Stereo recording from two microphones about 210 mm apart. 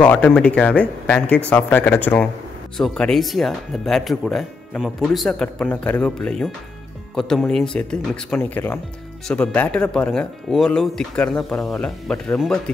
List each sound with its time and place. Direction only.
0.0 s speech: 5° left (ahead or behind)